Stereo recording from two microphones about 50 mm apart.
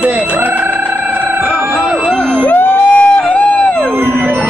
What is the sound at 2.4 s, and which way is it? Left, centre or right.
Music, left.